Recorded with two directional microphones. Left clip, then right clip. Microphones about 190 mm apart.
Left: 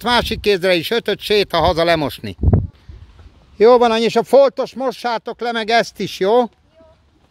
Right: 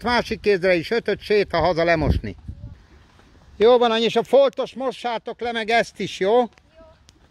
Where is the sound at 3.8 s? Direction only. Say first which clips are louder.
Left 4 dB; 25° left (ahead or behind).